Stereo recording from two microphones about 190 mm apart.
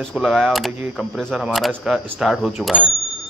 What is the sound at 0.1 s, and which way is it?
Speech, centre (ahead or behind).